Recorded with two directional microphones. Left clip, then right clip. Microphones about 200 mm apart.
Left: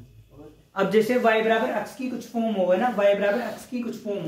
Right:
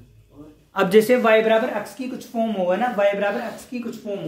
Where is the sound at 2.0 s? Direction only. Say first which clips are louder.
Right 1 dB; 45° right (ahead or behind).